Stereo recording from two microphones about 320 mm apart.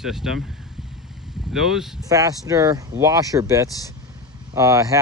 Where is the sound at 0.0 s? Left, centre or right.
Centre.